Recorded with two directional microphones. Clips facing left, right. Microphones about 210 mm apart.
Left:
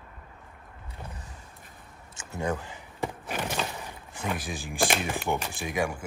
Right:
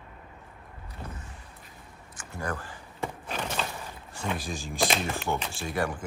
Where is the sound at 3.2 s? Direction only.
10° left (ahead or behind).